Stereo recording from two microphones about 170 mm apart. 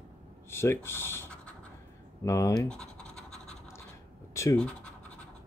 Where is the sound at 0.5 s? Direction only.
15° left (ahead or behind).